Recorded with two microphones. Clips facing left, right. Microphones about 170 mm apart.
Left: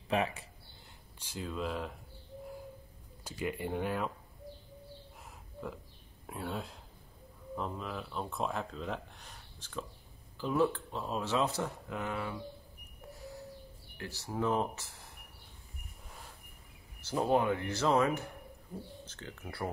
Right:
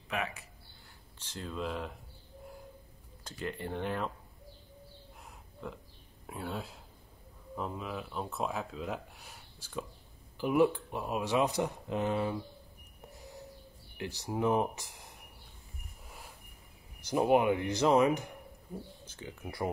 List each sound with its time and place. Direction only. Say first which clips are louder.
0.1 s speech: left 5 dB; 30° left (ahead or behind)
1.2 s speech: even; 5° left (ahead or behind)
3.3 s speech: left 2 dB; 10° left (ahead or behind)
6.2 s speech: even; centre (ahead or behind); by 12.4 s 25° right (ahead or behind)
13.9 s speech: right 2 dB; 20° right (ahead or behind)
17.0 s speech: right 3 dB; 15° right (ahead or behind)
18.7 s speech: right 1 dB; centre (ahead or behind)